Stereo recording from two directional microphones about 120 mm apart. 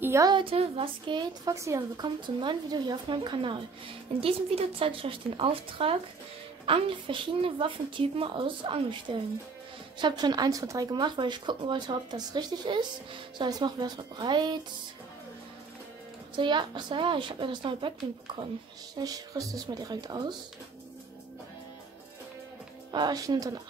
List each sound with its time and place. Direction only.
0.0 s a sound: 20° right (ahead or behind)
0.3 s a woman's voice: 45° right (ahead or behind)
1.4 s a woman's voice: 25° right (ahead or behind)
16.3 s a woman's voice: 40° right (ahead or behind)
18.9 s speech: 30° right (ahead or behind)
22.9 s speech: 35° right (ahead or behind)